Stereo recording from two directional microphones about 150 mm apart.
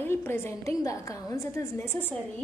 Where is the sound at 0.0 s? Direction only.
15° left (ahead or behind).